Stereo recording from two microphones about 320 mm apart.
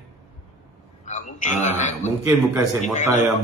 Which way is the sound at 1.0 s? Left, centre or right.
Left.